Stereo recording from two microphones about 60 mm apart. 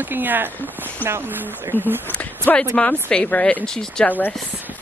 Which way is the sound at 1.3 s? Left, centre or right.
Right.